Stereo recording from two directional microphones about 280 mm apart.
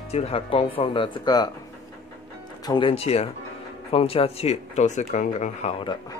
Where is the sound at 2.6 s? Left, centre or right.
Centre.